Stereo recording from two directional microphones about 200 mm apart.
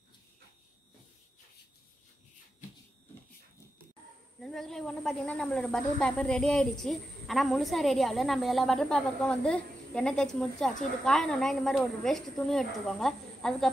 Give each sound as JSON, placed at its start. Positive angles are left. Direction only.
{"t": 4.4, "sound": "speech", "side_deg": 0}